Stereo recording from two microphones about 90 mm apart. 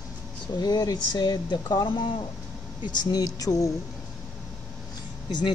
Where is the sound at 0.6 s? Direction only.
45° left (ahead or behind).